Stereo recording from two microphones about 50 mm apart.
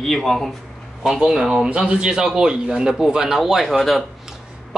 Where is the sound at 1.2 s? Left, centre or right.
Centre.